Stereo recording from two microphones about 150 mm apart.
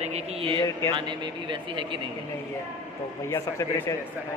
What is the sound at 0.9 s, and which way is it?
Speech, 30° right (ahead or behind).